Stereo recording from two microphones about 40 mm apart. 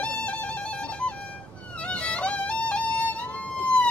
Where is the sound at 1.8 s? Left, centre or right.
Left.